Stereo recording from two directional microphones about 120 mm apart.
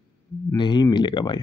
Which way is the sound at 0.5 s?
35° left (ahead or behind).